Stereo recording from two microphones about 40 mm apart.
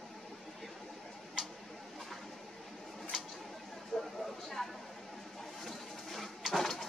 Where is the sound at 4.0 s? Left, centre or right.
Centre.